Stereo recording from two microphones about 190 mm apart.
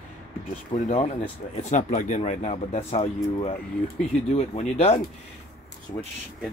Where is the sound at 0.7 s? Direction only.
40° left (ahead or behind).